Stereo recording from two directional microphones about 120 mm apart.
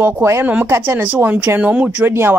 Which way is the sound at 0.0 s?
20° right (ahead or behind).